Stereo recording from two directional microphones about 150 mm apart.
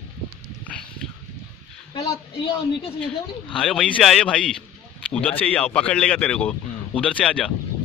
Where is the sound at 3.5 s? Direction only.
5° left (ahead or behind).